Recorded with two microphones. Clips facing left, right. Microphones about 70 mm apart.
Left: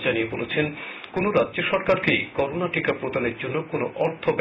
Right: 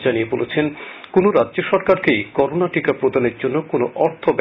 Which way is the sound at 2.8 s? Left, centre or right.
Right.